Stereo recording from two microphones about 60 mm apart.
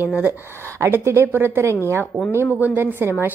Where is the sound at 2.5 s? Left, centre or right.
Right.